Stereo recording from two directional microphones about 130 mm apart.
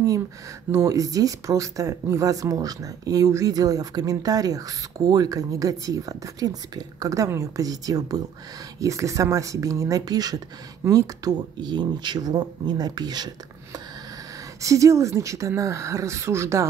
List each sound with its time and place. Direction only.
0.7 s speech: 20° right (ahead or behind)
14.6 s speech: 25° right (ahead or behind)